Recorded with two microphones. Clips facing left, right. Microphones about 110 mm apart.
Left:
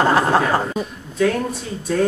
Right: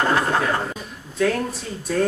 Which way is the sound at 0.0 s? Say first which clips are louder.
Left 5 dB; 30° left (ahead or behind).